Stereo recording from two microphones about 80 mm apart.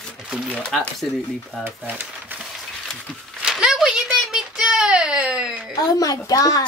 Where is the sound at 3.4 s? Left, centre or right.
Centre.